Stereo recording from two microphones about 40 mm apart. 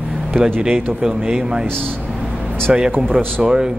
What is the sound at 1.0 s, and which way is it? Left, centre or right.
Speech, centre.